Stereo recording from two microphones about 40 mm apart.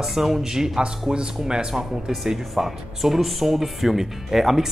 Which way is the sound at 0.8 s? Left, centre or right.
Right.